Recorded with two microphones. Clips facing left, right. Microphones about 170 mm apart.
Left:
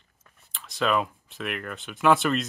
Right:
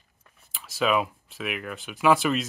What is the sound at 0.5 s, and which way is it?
Speech, 5° right (ahead or behind).